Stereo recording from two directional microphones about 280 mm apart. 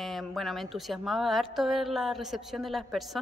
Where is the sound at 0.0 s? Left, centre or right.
Centre.